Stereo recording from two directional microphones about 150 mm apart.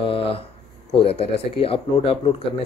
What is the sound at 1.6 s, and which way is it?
Speech, 40° left (ahead or behind).